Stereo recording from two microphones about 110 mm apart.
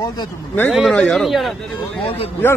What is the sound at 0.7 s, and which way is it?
Speech, centre (ahead or behind).